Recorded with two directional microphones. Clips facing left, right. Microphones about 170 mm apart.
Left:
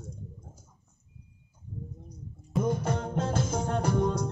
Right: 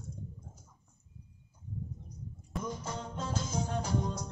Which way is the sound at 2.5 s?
60° left (ahead or behind).